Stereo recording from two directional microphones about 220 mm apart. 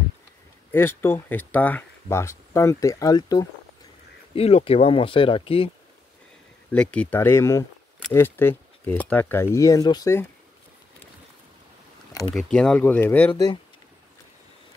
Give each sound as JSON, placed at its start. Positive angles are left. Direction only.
{"t": 0.7, "sound": "speech", "side_deg": 10}
{"t": 4.4, "sound": "speech", "side_deg": 25}
{"t": 6.7, "sound": "speech", "side_deg": 5}
{"t": 12.1, "sound": "a sound", "side_deg": 15}
{"t": 12.4, "sound": "speech", "side_deg": 5}
{"t": 13.3, "sound": "speech", "side_deg": 20}